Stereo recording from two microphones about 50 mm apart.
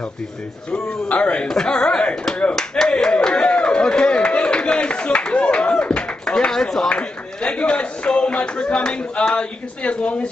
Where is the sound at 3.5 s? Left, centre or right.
Left.